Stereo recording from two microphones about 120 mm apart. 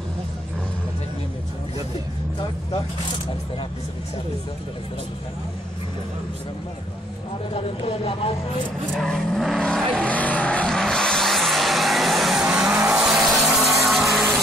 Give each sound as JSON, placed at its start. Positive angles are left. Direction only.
{"t": 7.5, "sound": "speech", "side_deg": 50}
{"t": 8.9, "sound": "vehicle", "side_deg": 5}
{"t": 13.8, "sound": "music", "side_deg": 0}